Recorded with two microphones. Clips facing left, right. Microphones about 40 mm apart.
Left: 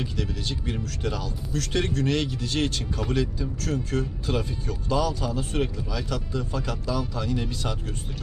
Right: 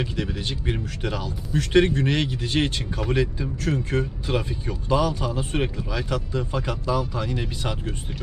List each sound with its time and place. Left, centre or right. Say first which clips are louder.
0.0 s speech: right 3 dB; right